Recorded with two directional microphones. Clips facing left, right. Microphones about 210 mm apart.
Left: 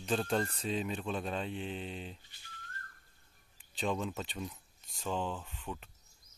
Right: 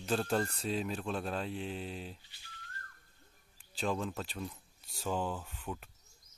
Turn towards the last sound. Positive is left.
turn(degrees=-5)  # may be behind; listen again after turning